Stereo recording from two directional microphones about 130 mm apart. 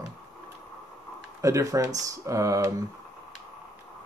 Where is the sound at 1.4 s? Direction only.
25° right (ahead or behind).